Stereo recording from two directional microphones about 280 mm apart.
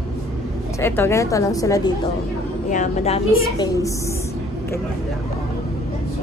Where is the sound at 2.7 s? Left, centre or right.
Left.